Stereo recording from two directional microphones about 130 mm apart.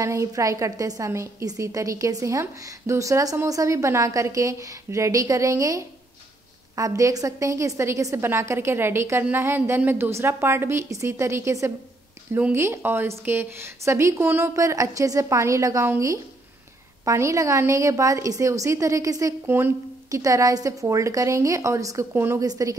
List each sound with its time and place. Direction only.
0.0 s a woman's voice: 25° right (ahead or behind)